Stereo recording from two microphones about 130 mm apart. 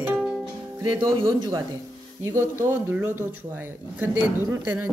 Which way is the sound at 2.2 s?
20° right (ahead or behind).